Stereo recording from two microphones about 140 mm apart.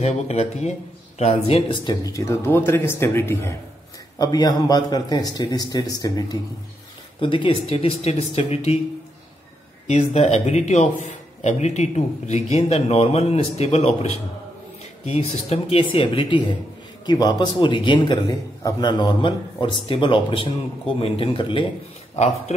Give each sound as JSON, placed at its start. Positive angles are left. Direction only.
{"t": 0.0, "sound": "speech", "side_deg": 50}
{"t": 4.2, "sound": "a man's voice", "side_deg": 30}
{"t": 9.8, "sound": "a man's voice", "side_deg": 55}
{"t": 22.1, "sound": "a man's voice", "side_deg": 50}